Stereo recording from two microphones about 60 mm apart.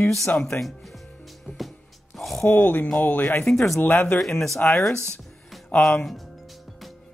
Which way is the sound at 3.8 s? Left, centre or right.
Left.